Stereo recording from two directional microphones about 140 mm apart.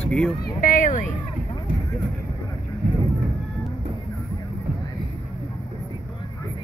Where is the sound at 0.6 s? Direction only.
70° left (ahead or behind).